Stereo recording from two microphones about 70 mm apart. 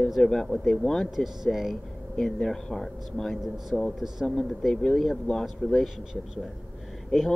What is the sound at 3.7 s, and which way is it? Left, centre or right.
Speech, right.